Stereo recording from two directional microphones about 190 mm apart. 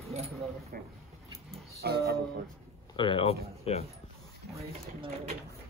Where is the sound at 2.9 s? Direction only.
25° left (ahead or behind).